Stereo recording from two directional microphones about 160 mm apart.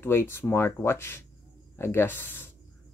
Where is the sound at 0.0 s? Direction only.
15° left (ahead or behind).